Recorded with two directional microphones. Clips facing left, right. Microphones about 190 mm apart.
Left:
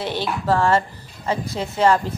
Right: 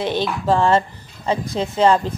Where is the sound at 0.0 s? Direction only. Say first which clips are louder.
Right 3 dB; 20° right (ahead or behind).